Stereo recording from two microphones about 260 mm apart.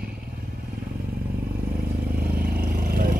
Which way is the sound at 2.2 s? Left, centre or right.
Right.